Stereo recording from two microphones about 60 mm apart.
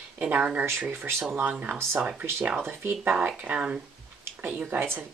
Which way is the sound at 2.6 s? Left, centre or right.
Right.